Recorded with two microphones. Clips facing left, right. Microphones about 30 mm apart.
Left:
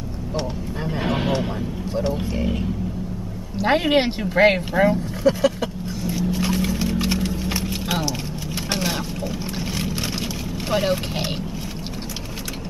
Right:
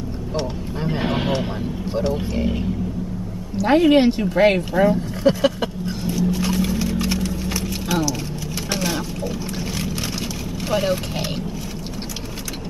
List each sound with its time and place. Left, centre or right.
1.0 s vehicle: centre
2.0 s a man's voice: centre
3.6 s speech: left
5.2 s a sound: right
6.1 s vehicle: centre
6.8 s music: centre
9.8 s vehicle: centre